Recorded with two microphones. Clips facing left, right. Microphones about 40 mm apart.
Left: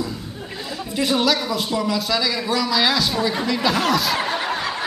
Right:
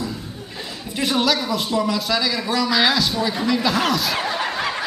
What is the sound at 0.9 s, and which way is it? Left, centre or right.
Speech, centre.